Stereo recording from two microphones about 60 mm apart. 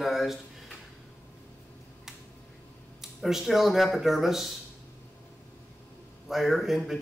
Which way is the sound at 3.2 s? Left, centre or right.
Centre.